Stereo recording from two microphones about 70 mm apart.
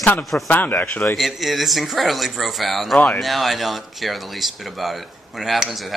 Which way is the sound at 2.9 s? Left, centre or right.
Left.